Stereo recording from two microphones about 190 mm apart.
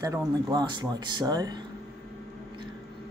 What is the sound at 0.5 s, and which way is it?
Speech, 20° right (ahead or behind).